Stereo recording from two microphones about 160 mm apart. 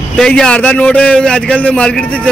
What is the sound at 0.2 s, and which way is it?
A man's voice, 5° left (ahead or behind).